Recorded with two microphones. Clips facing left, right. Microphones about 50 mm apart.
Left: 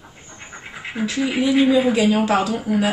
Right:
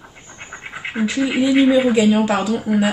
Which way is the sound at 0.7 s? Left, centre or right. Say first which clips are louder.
Right 4 dB; right.